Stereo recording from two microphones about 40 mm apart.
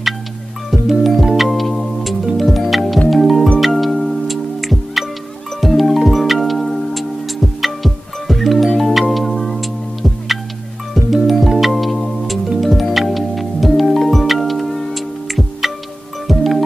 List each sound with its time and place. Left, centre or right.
0.7 s music: centre